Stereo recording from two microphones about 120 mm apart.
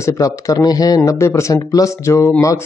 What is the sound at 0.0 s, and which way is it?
Speech, 25° left (ahead or behind).